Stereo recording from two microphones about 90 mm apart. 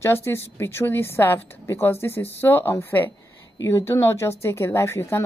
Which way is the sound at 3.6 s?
35° left (ahead or behind).